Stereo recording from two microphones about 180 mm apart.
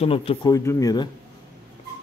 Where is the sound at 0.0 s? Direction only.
30° left (ahead or behind).